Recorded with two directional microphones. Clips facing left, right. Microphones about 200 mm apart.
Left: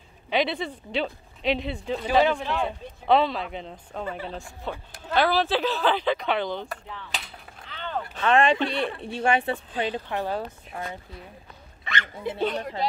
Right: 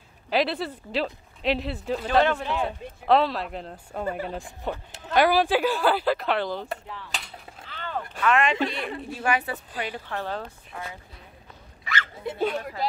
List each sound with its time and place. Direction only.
0.3 s speech: centre (ahead or behind)
2.0 s speech: 5° left (ahead or behind)
6.9 s gunshot: centre (ahead or behind)
8.2 s a woman's voice: 30° left (ahead or behind); by 10.4 s 15° left (ahead or behind)
12.3 s speech: 5° right (ahead or behind)